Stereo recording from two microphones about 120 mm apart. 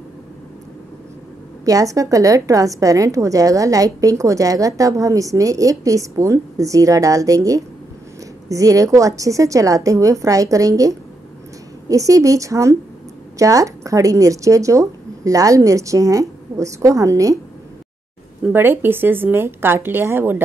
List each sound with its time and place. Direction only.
1.6 s a woman's voice: 30° right (ahead or behind)
18.4 s a woman's voice: 15° right (ahead or behind)